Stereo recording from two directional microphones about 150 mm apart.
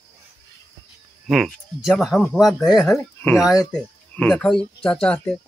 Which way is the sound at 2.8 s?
Centre (ahead or behind).